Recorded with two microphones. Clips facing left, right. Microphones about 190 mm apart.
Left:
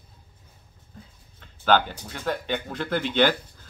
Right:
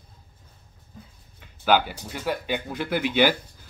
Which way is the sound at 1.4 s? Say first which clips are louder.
Even; 10° right (ahead or behind).